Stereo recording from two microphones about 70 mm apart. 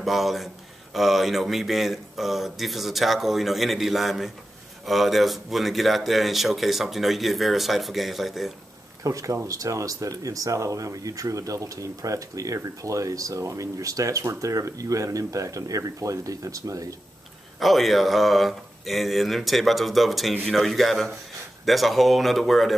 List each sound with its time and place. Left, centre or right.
0.0 s speech: centre
9.0 s speech: right
17.6 s speech: centre